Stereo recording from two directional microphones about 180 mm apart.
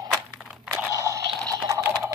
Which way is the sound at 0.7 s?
15° right (ahead or behind).